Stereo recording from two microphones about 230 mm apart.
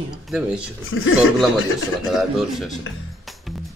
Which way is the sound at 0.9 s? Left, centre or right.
Left.